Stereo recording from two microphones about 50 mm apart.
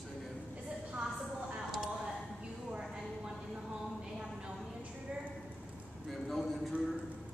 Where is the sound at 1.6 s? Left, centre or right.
Centre.